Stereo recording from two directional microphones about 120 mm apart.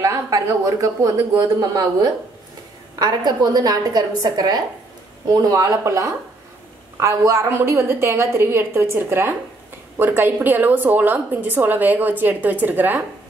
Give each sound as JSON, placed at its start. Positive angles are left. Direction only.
{"t": 0.0, "sound": "a woman's voice", "side_deg": -25}